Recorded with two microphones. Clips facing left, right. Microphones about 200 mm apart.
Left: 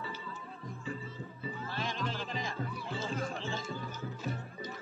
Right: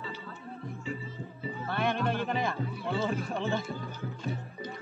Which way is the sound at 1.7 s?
60° right (ahead or behind).